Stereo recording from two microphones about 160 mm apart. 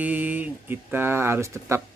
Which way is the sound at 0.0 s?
10° right (ahead or behind).